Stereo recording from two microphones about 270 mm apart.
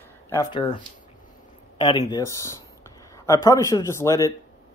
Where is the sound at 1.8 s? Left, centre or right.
Centre.